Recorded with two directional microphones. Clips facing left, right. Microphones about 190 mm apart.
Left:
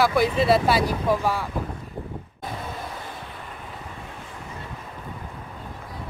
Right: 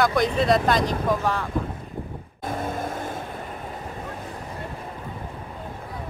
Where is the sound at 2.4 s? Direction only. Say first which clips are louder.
Right 6 dB; 50° right (ahead or behind).